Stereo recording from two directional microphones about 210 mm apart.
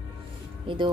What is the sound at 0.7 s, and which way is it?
Speech, 25° right (ahead or behind).